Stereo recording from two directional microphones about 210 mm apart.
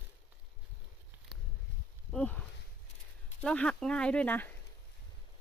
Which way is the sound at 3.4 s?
5° left (ahead or behind).